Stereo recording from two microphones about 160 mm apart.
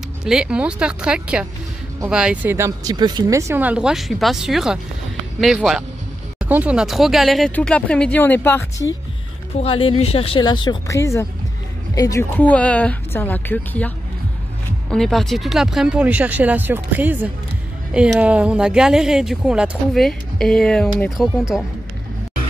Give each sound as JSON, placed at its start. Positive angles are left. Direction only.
{"t": 0.2, "sound": "speech", "side_deg": -5}
{"t": 9.6, "sound": "speech", "side_deg": 35}